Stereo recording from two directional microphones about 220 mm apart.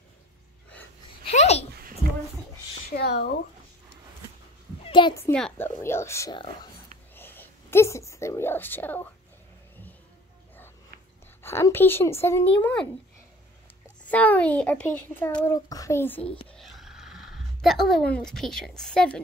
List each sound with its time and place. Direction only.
1.2 s a sound: 30° left (ahead or behind)
3.0 s speech: 45° left (ahead or behind)
4.8 s a child's voice: 20° left (ahead or behind)
5.2 s a child's voice: 5° left (ahead or behind)
7.2 s a sound: 10° left (ahead or behind)
11.4 s a child's voice: 10° left (ahead or behind)
14.0 s a child's voice: 5° left (ahead or behind)
16.4 s a sound: centre (ahead or behind)
18.1 s a woman's voice: centre (ahead or behind)